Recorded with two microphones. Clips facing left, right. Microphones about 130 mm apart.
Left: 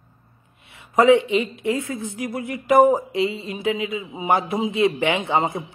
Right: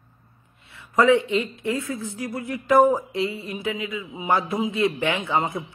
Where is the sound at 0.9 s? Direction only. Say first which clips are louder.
Left 3 dB; 20° left (ahead or behind).